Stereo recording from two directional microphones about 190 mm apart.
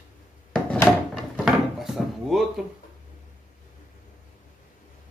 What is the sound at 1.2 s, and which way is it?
Drawer open or close, centre (ahead or behind).